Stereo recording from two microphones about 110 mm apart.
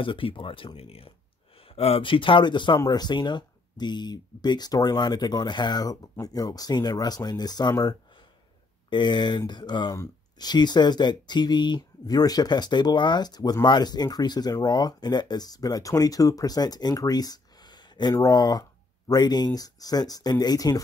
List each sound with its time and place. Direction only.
0.0 s a man's voice: 50° left (ahead or behind)
8.9 s a man's voice: 45° left (ahead or behind)